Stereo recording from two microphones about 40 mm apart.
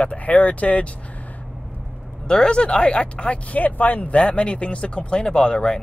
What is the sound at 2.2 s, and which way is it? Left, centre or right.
Speech, centre.